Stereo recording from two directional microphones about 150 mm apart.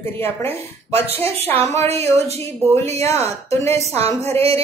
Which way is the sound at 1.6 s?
20° left (ahead or behind).